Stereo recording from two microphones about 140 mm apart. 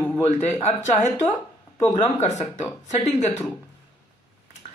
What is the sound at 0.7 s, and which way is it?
Speech, 50° left (ahead or behind).